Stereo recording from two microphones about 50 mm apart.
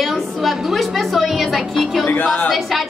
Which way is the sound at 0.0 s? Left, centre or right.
Centre.